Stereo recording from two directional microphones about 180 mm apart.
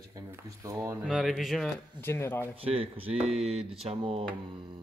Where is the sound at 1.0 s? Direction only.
Centre (ahead or behind).